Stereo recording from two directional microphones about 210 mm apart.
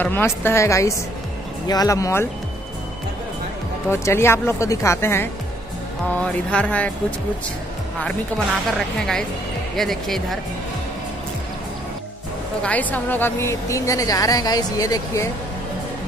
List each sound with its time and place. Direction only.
0.0 s a woman's voice: 10° left (ahead or behind)
3.9 s a woman's voice: 10° left (ahead or behind)
8.7 s speech: centre (ahead or behind)
12.6 s a woman's voice: 10° left (ahead or behind)